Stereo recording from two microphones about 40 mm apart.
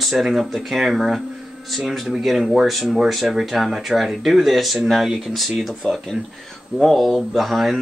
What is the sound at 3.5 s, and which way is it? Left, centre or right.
Speech, centre.